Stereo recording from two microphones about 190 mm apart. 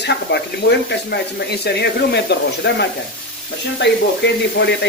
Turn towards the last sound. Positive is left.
turn(degrees=65)  # may be behind; listen again after turning